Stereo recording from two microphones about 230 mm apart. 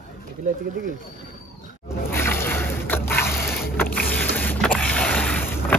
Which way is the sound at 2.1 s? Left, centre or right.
Centre.